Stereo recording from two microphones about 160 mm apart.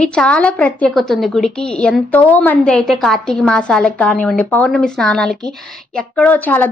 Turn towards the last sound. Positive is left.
turn(degrees=10)  # may be behind; listen again after turning